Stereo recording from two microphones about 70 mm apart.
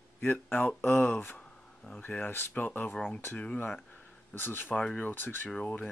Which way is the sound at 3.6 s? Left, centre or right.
Centre.